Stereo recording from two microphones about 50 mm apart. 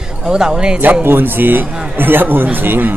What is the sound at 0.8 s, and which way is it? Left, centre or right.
A man's voice, right.